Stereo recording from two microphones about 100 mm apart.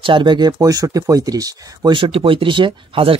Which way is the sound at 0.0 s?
55° right (ahead or behind).